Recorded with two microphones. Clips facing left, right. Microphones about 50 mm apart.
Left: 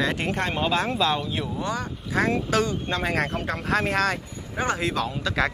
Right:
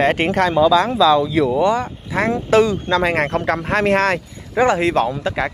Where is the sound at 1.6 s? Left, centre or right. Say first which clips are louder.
Right 11 dB; right.